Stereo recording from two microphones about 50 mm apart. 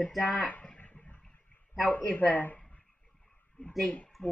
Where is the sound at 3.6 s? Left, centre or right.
Left.